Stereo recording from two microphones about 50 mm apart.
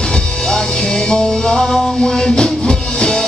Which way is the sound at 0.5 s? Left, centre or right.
Centre.